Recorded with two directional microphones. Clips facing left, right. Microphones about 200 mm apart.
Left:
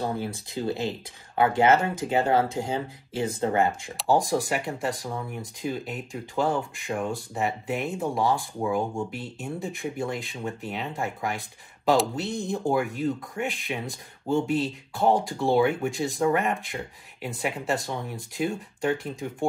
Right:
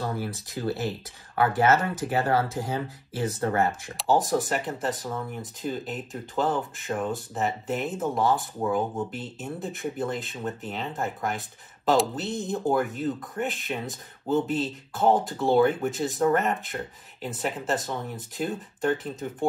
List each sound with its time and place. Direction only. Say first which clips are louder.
0.0 s speech: left 1 dB; 20° left (ahead or behind)
3.9 s speech: right 1 dB; centre (ahead or behind)